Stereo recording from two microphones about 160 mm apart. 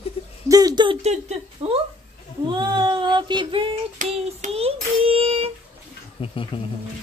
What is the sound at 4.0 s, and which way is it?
Child singing, 45° right (ahead or behind).